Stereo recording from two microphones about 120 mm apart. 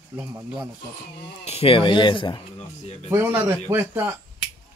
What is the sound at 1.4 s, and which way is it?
Speech, 55° left (ahead or behind).